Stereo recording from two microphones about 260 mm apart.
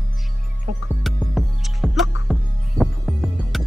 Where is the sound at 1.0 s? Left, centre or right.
Centre.